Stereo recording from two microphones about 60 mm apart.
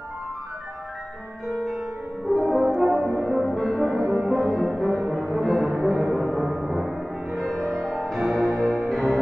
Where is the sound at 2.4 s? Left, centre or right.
Centre.